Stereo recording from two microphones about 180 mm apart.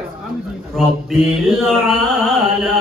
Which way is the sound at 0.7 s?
5° left (ahead or behind).